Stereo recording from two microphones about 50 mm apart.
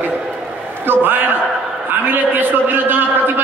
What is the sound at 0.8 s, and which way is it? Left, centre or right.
A man's voice, right.